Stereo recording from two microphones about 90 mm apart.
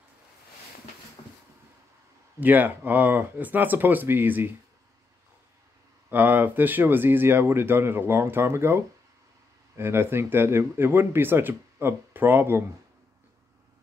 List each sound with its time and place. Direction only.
1.2 s a sound: 90° left
2.4 s speech: 20° right (ahead or behind)
6.0 s speech: 20° right (ahead or behind)